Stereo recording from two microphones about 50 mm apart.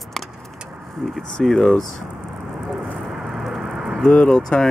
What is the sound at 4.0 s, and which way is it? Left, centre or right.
Speech, centre.